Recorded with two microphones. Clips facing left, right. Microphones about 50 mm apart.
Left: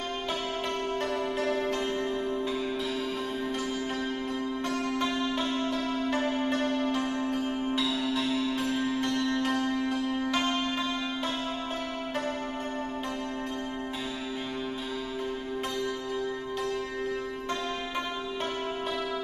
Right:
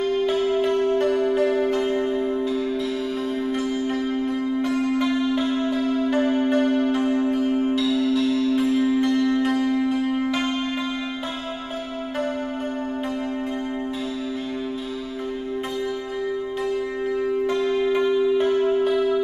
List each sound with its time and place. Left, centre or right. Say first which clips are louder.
0.0 s music: right 11 dB; centre
2.4 s music: right 7 dB; centre
3.7 s music: right 8 dB; centre
7.3 s music: right 9 dB; centre
7.7 s music: right 8 dB; centre
8.7 s music: right 9 dB; centre
17.5 s music: right 11 dB; centre